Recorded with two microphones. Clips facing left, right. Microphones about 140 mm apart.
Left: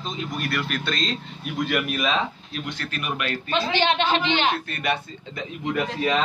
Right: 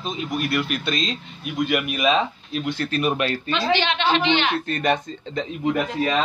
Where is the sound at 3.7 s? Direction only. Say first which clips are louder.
Left 2 dB; 45° left (ahead or behind).